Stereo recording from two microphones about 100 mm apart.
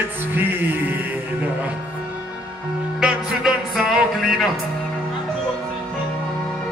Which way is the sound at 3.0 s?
5° right (ahead or behind).